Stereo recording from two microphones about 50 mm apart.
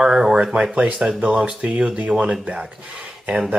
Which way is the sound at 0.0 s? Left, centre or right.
Centre.